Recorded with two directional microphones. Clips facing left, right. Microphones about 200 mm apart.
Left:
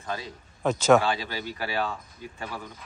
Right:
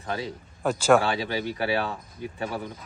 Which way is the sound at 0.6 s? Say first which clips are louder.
Even; 10° right (ahead or behind).